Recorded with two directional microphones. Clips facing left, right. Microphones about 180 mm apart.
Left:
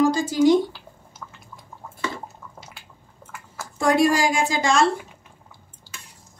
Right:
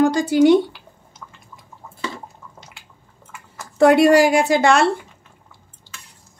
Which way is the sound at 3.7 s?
65° right (ahead or behind).